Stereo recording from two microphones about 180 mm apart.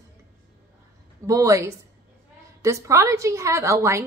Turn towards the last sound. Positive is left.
turn(degrees=-15)  # may be behind; listen again after turning